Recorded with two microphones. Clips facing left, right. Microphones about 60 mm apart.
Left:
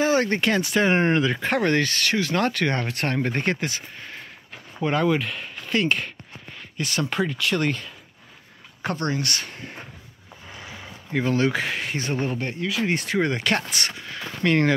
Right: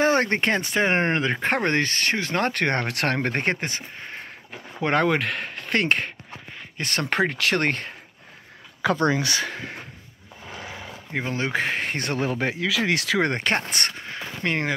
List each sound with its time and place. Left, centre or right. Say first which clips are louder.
0.0 s speech: even; right
2.9 s speech: right 1 dB; right
3.4 s speech: even; right
4.8 s speech: right 1 dB; right
9.5 s a sound: right 4 dB; right
11.1 s speech: left 3 dB; right
12.2 s speech: right 2 dB; right
13.3 s speech: even; right
14.4 s speech: left 6 dB; centre